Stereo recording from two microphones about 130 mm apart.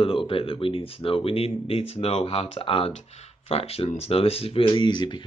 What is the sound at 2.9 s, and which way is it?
Speech, 55° left (ahead or behind).